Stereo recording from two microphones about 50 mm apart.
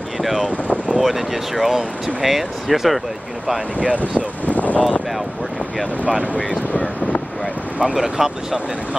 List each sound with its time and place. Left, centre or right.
0.2 s speech: centre
4.5 s a sound: left
6.3 s speech: left
7.8 s speech: centre